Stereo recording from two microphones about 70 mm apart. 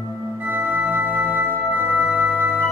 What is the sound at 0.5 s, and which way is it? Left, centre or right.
Music, right.